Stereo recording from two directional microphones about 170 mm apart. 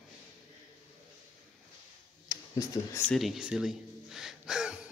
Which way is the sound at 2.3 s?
20° left (ahead or behind).